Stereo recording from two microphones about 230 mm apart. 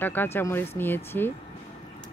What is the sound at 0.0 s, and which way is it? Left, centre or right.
Speech, centre.